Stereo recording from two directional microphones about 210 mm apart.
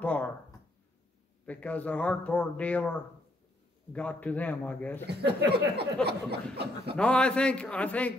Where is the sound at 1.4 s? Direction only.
5° left (ahead or behind).